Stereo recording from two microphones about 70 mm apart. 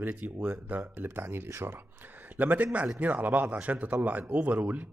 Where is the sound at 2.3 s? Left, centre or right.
Right.